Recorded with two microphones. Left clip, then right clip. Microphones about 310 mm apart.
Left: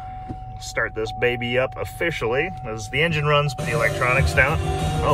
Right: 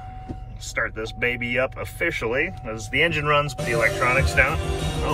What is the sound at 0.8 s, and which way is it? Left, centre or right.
Speech, centre.